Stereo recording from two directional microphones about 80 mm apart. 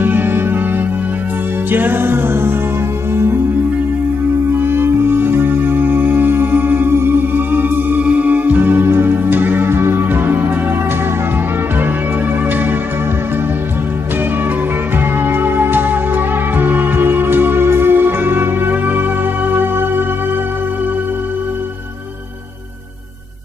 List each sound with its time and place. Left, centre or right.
0.0 s music: right
4.6 s music: right
15.2 s music: right